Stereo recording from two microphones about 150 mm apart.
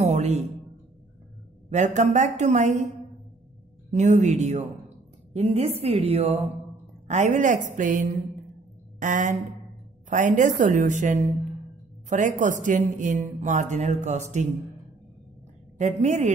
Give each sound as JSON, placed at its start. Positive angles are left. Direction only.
{"t": 0.0, "sound": "a sound", "side_deg": -50}
{"t": 1.7, "sound": "a woman's voice", "side_deg": -50}
{"t": 3.9, "sound": "a woman's voice", "side_deg": -50}
{"t": 15.8, "sound": "a woman's voice", "side_deg": -50}